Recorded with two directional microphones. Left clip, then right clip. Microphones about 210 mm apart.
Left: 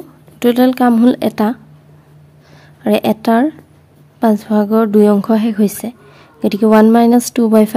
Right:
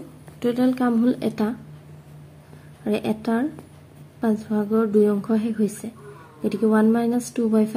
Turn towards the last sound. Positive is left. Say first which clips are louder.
# left 11 dB
turn(degrees=50)  # may be behind; listen again after turning